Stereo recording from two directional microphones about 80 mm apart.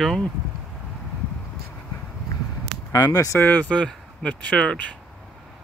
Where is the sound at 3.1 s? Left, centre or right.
Left.